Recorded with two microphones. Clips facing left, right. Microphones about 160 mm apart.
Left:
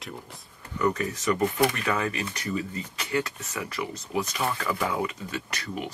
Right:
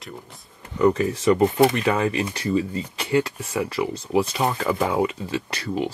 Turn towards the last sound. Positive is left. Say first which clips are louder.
# right 7 dB
turn(degrees=-30)  # may be behind; listen again after turning